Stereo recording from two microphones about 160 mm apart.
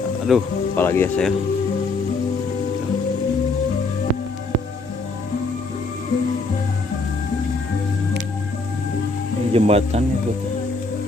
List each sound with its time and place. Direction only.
0.3 s speech: centre (ahead or behind)
0.7 s speech: 15° left (ahead or behind)
9.5 s speech: 40° right (ahead or behind)